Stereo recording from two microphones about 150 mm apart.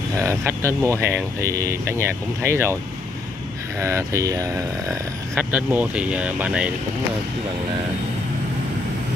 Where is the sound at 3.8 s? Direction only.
20° right (ahead or behind).